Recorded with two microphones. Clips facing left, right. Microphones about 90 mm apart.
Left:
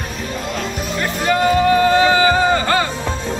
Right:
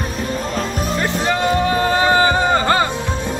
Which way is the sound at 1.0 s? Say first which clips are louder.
Left 3 dB; 30° right (ahead or behind).